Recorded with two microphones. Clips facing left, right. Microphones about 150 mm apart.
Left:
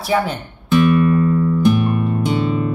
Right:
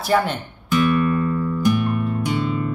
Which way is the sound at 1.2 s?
20° left (ahead or behind).